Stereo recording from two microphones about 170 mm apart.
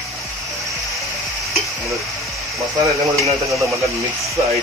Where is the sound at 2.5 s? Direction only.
20° right (ahead or behind).